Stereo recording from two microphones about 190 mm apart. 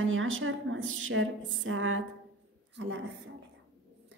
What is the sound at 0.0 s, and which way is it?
A woman's voice, 90° right.